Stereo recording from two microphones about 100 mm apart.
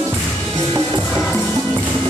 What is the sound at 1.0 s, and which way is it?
Music, 5° left (ahead or behind).